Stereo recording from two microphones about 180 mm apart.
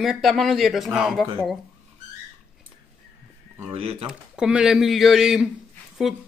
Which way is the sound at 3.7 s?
35° right (ahead or behind).